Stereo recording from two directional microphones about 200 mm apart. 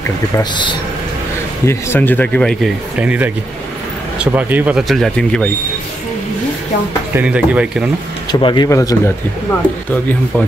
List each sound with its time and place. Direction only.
0.4 s speech: 25° left (ahead or behind)
1.7 s speech: 10° left (ahead or behind)
3.0 s speech: 5° right (ahead or behind)
7.2 s speech: 5° right (ahead or behind)
8.3 s speech: 25° left (ahead or behind)